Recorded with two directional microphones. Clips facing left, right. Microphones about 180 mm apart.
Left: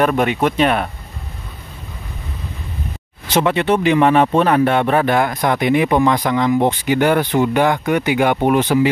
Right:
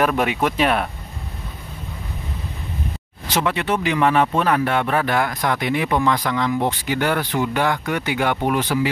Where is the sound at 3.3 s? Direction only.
25° left (ahead or behind).